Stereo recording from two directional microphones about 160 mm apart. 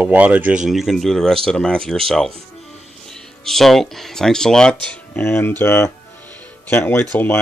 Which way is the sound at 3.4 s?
Centre (ahead or behind).